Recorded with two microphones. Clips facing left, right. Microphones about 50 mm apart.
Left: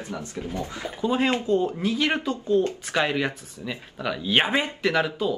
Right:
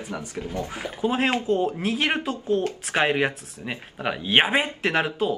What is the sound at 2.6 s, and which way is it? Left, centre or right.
Speech, right.